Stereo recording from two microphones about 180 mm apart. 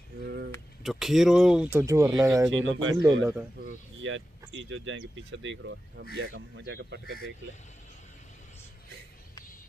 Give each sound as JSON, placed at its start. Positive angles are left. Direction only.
{"t": 0.2, "sound": "a sound", "side_deg": -65}
{"t": 0.8, "sound": "speech", "side_deg": 0}
{"t": 2.5, "sound": "speech", "side_deg": -90}
{"t": 3.0, "sound": "speech", "side_deg": -15}
{"t": 4.0, "sound": "speech", "side_deg": -90}